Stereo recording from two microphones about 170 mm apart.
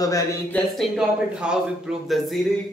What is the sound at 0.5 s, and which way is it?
Speech, centre (ahead or behind).